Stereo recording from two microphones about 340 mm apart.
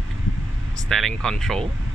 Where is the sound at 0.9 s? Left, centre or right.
Centre.